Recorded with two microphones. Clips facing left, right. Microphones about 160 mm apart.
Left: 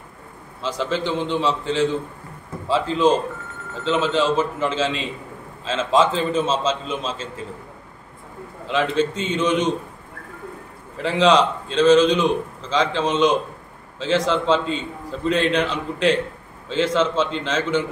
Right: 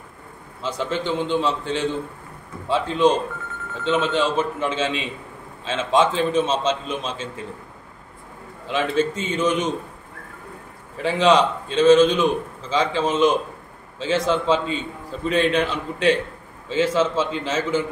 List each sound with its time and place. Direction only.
0.9 s a man's voice: centre (ahead or behind)
8.6 s a man's voice: centre (ahead or behind)
11.0 s a man's voice: centre (ahead or behind)